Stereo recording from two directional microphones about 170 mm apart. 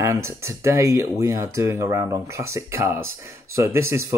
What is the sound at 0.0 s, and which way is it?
Speech, 20° right (ahead or behind).